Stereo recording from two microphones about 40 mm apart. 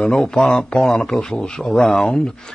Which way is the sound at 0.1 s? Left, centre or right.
Centre.